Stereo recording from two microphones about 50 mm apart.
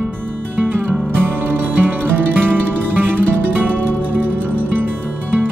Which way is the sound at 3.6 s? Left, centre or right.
Right.